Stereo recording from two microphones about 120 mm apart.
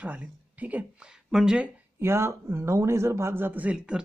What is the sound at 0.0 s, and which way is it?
Speech, 10° right (ahead or behind).